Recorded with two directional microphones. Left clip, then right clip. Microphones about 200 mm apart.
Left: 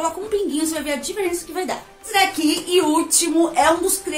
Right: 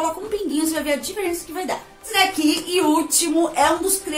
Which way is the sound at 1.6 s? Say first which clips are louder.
Even; 5° left (ahead or behind).